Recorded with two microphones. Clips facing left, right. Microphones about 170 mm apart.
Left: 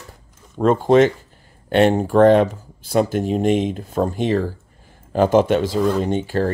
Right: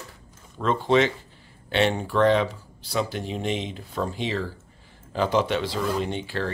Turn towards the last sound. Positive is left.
turn(degrees=45)  # may be behind; listen again after turning